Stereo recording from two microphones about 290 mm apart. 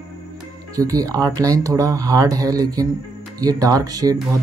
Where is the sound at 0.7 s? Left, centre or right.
Centre.